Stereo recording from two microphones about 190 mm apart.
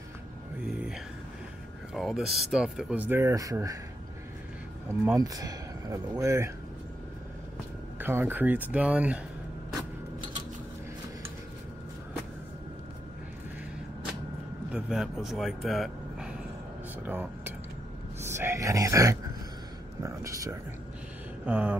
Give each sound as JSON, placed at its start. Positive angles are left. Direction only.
{"t": 0.7, "sound": "a sound", "side_deg": -5}
{"t": 2.0, "sound": "speech", "side_deg": 0}
{"t": 5.0, "sound": "speech", "side_deg": -15}
{"t": 8.0, "sound": "speech", "side_deg": -10}
{"t": 14.7, "sound": "speech", "side_deg": 0}
{"t": 21.5, "sound": "speech", "side_deg": -5}